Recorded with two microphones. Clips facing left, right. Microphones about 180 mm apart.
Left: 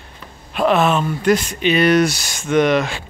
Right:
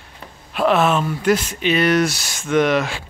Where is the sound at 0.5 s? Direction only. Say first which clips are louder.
Left 1 dB; centre (ahead or behind).